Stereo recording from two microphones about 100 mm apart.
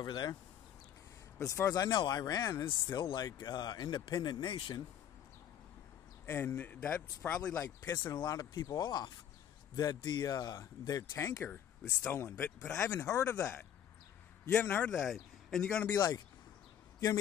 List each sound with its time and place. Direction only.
0.0 s speech: 45° left (ahead or behind)
1.5 s speech: 35° left (ahead or behind)
1.9 s speech: 45° left (ahead or behind)
2.9 s speech: 50° left (ahead or behind)
6.2 s a man's voice: 20° left (ahead or behind)
7.6 s speech: 40° left (ahead or behind)
14.4 s a man's voice: 15° left (ahead or behind)
15.0 s speech: centre (ahead or behind)
15.6 s a man's voice: 15° left (ahead or behind)